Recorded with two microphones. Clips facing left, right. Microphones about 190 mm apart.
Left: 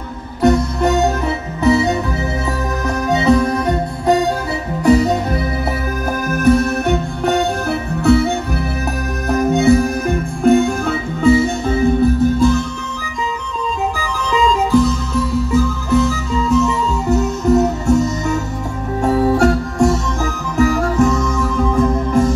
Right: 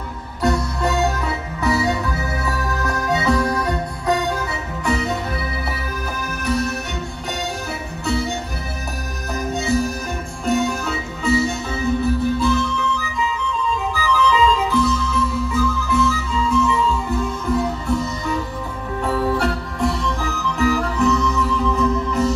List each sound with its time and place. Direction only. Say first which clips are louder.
0.4 s music: left 7 dB; 20° left (ahead or behind)
3.1 s music: left 6 dB; 20° left (ahead or behind)
4.8 s music: left 10 dB; 40° left (ahead or behind)
6.3 s music: left 9 dB; 50° left (ahead or behind)
9.3 s music: left 9 dB; 60° left (ahead or behind)
13.9 s music: right 1 dB; 45° left (ahead or behind)